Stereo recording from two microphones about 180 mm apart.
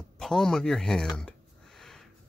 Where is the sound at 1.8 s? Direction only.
Centre (ahead or behind).